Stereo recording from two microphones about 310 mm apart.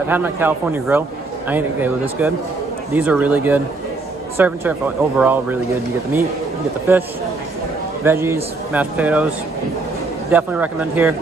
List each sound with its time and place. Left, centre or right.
0.1 s a man's voice: centre
8.0 s a man's voice: centre
10.3 s a man's voice: centre